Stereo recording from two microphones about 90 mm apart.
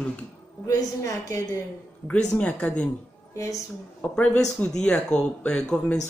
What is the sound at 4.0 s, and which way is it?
Speech, 15° left (ahead or behind).